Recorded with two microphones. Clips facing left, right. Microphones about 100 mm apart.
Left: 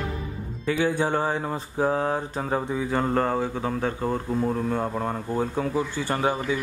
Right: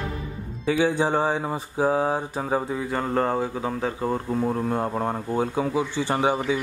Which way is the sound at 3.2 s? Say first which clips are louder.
Right 1 dB; 15° right (ahead or behind).